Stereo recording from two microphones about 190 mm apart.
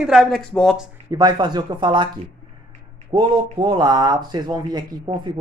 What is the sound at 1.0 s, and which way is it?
Speech, 20° right (ahead or behind).